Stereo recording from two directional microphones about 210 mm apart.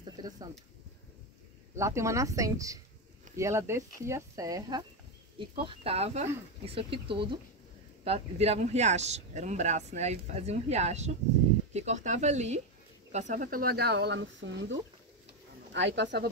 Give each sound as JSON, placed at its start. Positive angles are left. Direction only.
{"t": 1.8, "sound": "speech", "side_deg": -15}